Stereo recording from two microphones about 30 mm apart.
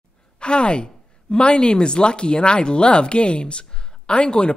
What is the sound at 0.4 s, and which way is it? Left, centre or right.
A woman's voice, left.